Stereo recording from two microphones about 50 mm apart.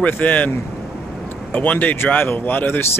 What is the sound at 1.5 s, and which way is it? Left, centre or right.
Speech, left.